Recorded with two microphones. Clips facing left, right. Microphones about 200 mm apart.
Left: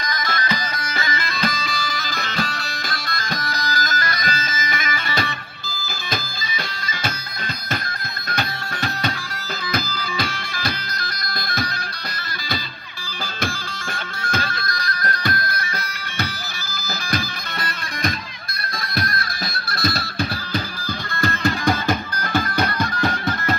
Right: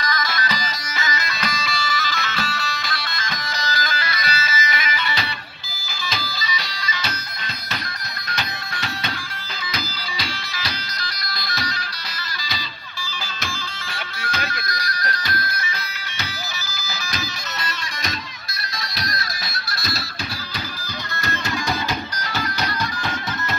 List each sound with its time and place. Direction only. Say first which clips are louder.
0.2 s music: left 1 dB; 55° left (ahead or behind)
2.2 s music: left 1 dB; 45° left (ahead or behind)
8.3 s music: left 4 dB; 50° left (ahead or behind)
9.7 s bagpipes: left 6 dB; 50° left (ahead or behind)
13.9 s music: left 3 dB; 50° left (ahead or behind)
18.9 s music: left 5 dB; 55° left (ahead or behind)
21.2 s music: left 6 dB; 55° left (ahead or behind)